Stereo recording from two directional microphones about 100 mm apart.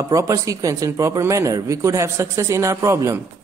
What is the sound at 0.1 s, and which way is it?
A man's voice, 30° right (ahead or behind).